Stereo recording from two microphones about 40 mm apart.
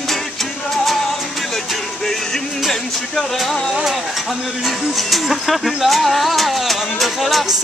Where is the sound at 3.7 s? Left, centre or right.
Centre.